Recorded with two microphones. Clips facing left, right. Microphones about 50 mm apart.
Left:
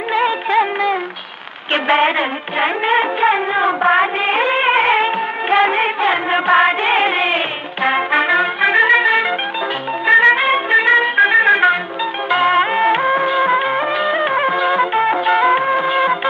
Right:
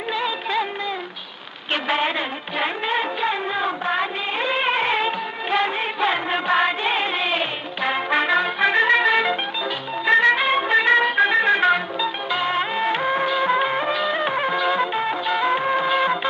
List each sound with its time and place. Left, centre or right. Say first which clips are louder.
0.1 s music of bollywood: left 9 dB; left
1.7 s music: left 8 dB; left
8.1 s brass instrument: left 5 dB; left
10.0 s music: left 5 dB; left
12.3 s music: left 11 dB; left
15.0 s music: left 8 dB; left
15.6 s music: left 4 dB; left